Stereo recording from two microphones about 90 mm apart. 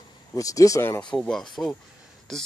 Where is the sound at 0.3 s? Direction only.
40° left (ahead or behind).